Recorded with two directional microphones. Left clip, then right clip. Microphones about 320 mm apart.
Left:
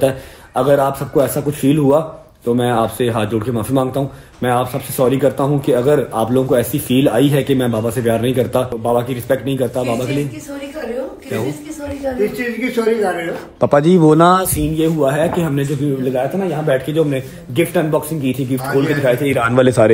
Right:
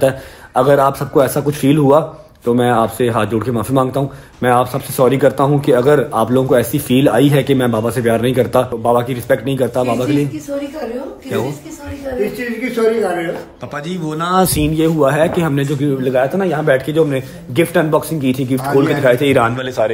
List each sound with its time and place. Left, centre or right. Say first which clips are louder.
0.6 s a man's voice: right 2 dB; centre
12.4 s a man's voice: right 1 dB; centre
13.7 s speech: left 14 dB; centre
14.5 s a man's voice: right 2 dB; centre
19.5 s speech: left 10 dB; centre